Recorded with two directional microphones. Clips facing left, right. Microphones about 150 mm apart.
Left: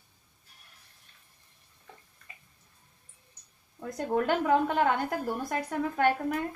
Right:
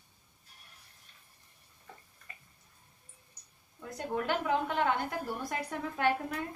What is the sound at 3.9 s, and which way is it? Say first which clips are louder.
A woman's voice: left 5 dB; 45° left (ahead or behind).